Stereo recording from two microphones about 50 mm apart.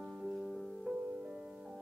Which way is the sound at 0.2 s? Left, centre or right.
Centre.